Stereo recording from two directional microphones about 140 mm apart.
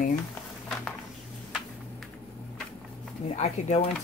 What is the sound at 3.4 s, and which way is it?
Speech, 55° left (ahead or behind).